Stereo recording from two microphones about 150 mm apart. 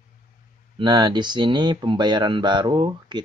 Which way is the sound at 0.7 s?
30° right (ahead or behind).